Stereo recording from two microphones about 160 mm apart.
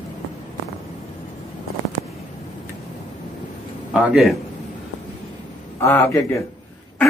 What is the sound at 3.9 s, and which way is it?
Speech, 5° right (ahead or behind).